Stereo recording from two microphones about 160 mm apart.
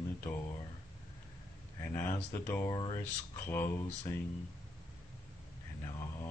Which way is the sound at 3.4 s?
15° left (ahead or behind).